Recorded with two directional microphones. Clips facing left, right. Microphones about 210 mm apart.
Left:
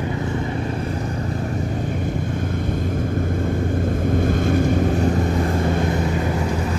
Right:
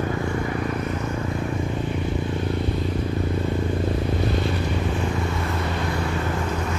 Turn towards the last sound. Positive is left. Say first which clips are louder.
# left 6 dB
turn(degrees=45)  # may be behind; listen again after turning